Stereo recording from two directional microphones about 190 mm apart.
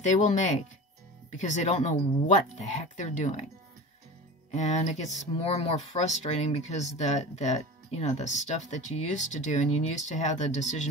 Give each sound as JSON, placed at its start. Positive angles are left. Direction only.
{"t": 0.0, "sound": "speech", "side_deg": 40}
{"t": 4.5, "sound": "speech", "side_deg": 40}